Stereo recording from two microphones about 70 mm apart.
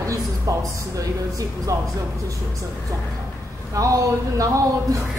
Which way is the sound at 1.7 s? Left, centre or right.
Right.